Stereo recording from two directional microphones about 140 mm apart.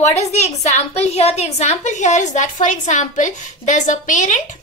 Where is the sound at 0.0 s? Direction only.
55° left (ahead or behind).